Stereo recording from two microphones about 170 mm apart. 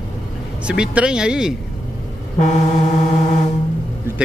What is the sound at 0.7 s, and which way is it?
Speech, 5° right (ahead or behind).